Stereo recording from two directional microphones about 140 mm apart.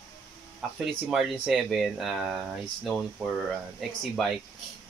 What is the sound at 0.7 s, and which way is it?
Speech, 5° right (ahead or behind).